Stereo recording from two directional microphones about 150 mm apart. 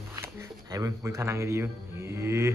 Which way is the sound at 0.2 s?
20° right (ahead or behind).